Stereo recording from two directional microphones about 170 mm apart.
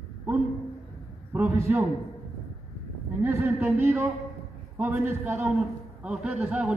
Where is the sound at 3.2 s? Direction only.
15° right (ahead or behind).